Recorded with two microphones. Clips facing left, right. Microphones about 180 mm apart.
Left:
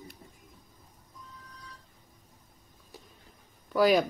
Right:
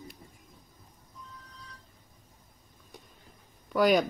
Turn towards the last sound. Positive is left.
turn(degrees=0)  # may be behind; listen again after turning